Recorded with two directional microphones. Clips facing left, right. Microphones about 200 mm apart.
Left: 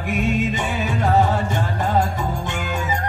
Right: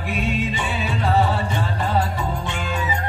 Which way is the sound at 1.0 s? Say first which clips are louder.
Left 2 dB; 45° left (ahead or behind).